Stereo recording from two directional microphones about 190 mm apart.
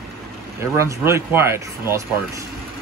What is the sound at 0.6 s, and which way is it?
Speech, 15° right (ahead or behind).